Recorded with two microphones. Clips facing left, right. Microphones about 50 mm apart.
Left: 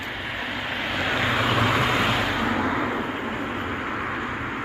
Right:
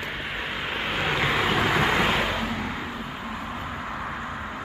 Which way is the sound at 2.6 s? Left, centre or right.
Left.